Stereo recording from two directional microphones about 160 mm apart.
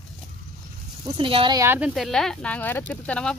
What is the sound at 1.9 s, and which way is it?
Speech, centre (ahead or behind).